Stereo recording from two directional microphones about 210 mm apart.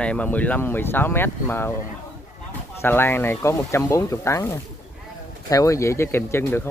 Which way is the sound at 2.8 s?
10° left (ahead or behind).